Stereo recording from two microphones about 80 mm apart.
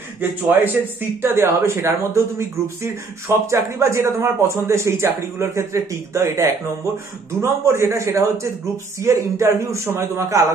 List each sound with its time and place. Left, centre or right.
0.2 s a man's voice: right